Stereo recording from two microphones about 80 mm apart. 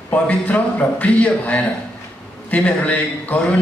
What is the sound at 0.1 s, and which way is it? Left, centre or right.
A man's voice, centre.